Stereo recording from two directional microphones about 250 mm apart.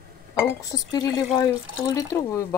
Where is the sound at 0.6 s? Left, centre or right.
Centre.